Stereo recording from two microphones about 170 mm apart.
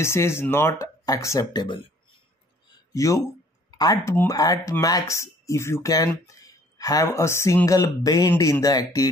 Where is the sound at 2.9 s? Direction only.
20° left (ahead or behind).